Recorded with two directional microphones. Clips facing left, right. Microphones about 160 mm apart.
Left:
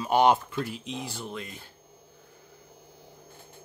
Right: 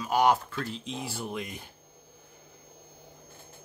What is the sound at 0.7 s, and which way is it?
Speech, centre (ahead or behind).